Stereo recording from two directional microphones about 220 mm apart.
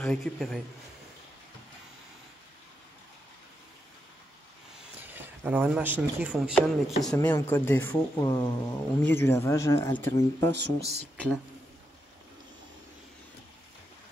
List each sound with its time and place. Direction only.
0.0 s a man's voice: 5° left (ahead or behind)
4.9 s a man's voice: 10° right (ahead or behind); by 10.5 s 10° left (ahead or behind)
10.8 s speech: 30° right (ahead or behind)